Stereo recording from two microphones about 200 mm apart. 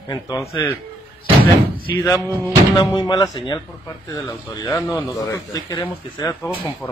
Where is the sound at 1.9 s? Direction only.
15° left (ahead or behind).